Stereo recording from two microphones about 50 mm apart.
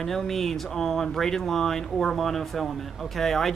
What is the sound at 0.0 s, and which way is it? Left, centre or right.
Speech, centre.